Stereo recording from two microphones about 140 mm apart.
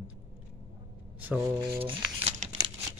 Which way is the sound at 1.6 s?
40° right (ahead or behind).